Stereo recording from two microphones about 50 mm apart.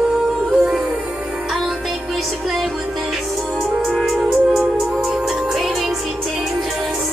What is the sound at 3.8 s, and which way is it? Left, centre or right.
Music, centre.